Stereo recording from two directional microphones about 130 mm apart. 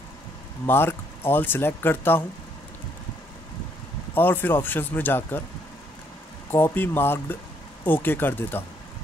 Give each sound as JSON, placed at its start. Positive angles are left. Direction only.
{"t": 0.7, "sound": "speech", "side_deg": 15}
{"t": 4.1, "sound": "speech", "side_deg": 15}
{"t": 6.5, "sound": "speech", "side_deg": 15}